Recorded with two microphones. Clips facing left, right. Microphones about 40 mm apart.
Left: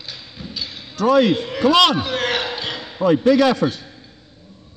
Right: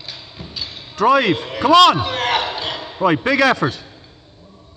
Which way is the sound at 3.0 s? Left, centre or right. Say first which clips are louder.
Left 1 dB; right.